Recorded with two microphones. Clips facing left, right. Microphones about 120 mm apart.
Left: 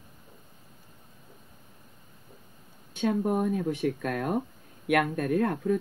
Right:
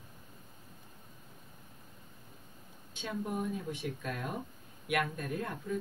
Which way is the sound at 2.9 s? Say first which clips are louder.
Left 11 dB; 55° left (ahead or behind).